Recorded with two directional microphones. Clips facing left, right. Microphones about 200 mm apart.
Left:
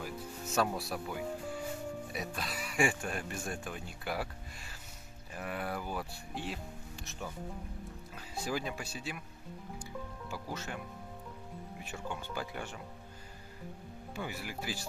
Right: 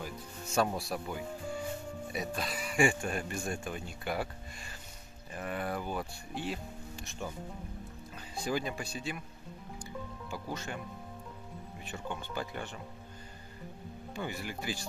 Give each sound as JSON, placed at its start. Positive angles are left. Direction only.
{"t": 0.0, "sound": "music", "side_deg": 0}
{"t": 0.7, "sound": "speech", "side_deg": 0}
{"t": 8.4, "sound": "speech", "side_deg": 5}
{"t": 10.3, "sound": "speech", "side_deg": 5}
{"t": 11.8, "sound": "speech", "side_deg": 10}
{"t": 14.1, "sound": "speech", "side_deg": 5}